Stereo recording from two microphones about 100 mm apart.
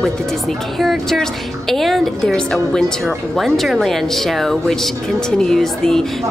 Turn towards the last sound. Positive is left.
turn(degrees=5)  # may be behind; listen again after turning